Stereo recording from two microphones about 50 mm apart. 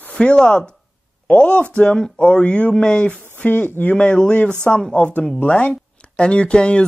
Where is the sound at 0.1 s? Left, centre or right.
Centre.